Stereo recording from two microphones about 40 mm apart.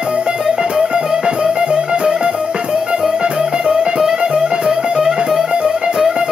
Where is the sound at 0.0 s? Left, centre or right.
Right.